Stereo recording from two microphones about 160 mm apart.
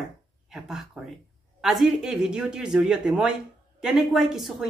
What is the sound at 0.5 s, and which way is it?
Speech, 5° right (ahead or behind).